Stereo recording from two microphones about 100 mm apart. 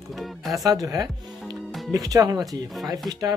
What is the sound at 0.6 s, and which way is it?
Speech, 35° right (ahead or behind).